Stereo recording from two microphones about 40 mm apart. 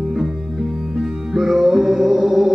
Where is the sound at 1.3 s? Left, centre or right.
Centre.